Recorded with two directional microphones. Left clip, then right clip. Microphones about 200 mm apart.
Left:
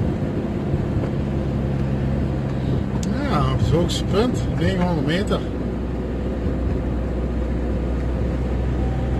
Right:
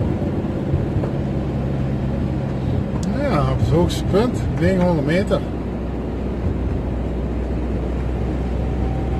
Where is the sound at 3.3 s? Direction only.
30° right (ahead or behind).